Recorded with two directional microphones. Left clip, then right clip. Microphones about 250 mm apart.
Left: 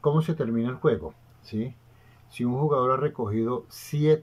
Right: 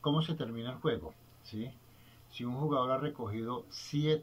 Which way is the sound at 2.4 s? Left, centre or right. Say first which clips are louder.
Left 9 dB; left.